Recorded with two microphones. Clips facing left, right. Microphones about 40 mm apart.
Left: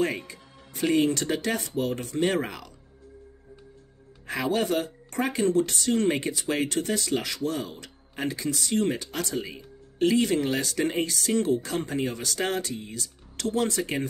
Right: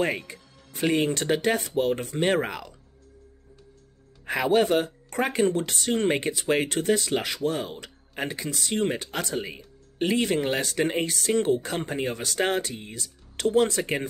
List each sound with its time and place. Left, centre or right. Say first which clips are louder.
0.3 s music: right 1 dB; centre
0.9 s speech: left 1 dB; right
1.8 s speech: right 2 dB; right
4.3 s speech: right 4 dB; right
5.3 s speech: left 2 dB; right
5.9 s speech: right 1 dB; centre
11.4 s speech: right 1 dB; right